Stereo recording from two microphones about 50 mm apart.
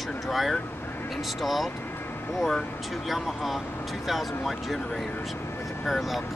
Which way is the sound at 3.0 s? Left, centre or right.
Centre.